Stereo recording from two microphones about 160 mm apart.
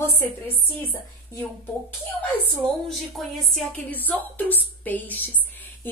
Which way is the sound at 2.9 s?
Centre (ahead or behind).